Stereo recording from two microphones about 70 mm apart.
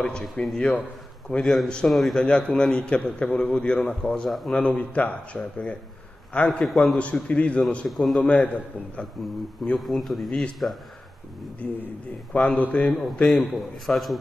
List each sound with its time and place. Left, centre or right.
0.0 s a man's voice: centre
1.4 s a man's voice: centre
2.2 s a man's voice: centre
4.5 s a man's voice: centre
6.6 s a man's voice: centre
7.0 s a man's voice: centre
7.9 s a man's voice: centre
8.3 s a man's voice: centre
9.0 s a man's voice: centre
10.6 s a man's voice: centre